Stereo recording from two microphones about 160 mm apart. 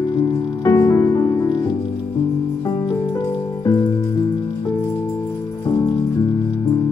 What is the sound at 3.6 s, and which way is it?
Music, 25° left (ahead or behind).